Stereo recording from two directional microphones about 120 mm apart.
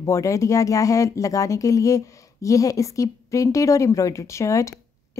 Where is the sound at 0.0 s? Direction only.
25° left (ahead or behind).